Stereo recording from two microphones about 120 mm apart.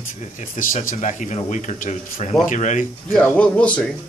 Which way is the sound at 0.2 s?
75° left (ahead or behind).